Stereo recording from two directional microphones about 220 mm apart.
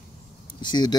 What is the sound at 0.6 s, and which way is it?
Speech, 20° left (ahead or behind).